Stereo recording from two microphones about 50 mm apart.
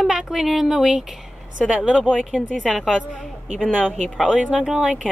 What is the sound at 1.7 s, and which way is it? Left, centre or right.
Speech, right.